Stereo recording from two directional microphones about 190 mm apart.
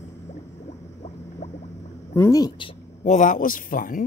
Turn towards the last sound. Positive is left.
turn(degrees=45)  # may be behind; listen again after turning